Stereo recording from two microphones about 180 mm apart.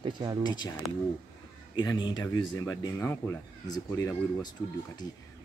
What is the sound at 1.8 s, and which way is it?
Speech, 25° left (ahead or behind).